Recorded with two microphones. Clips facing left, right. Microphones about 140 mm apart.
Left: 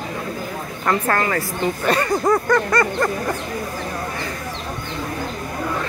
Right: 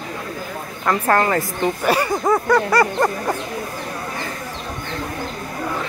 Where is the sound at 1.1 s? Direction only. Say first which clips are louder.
Right 3 dB; 25° right (ahead or behind).